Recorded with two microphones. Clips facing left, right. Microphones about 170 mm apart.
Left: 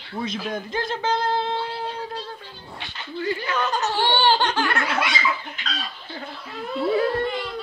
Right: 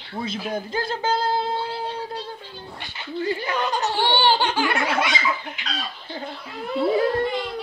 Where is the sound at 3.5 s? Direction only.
15° right (ahead or behind).